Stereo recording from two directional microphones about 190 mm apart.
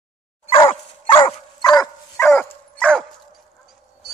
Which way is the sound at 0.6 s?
30° left (ahead or behind).